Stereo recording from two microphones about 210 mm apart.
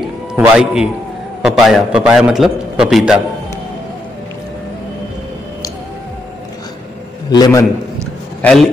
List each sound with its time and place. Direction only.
0.4 s a man's voice: 5° right (ahead or behind)
7.2 s a man's voice: 20° left (ahead or behind)
8.4 s a man's voice: 5° left (ahead or behind)